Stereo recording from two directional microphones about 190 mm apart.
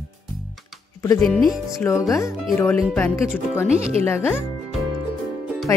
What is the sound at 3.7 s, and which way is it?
Speech, 35° right (ahead or behind).